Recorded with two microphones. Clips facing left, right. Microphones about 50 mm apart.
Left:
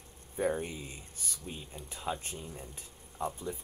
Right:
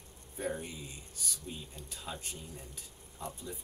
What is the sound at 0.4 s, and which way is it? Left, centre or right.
Speech, left.